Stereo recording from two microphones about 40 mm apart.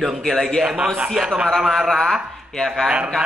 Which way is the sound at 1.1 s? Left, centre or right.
Centre.